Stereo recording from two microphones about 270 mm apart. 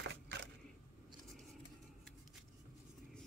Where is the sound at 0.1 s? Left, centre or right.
Right.